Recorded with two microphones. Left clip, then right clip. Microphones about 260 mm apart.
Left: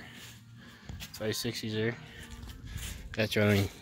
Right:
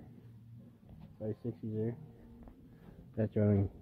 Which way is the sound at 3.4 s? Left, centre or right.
Centre.